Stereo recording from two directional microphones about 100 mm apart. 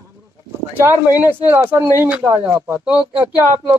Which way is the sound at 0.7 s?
20° right (ahead or behind).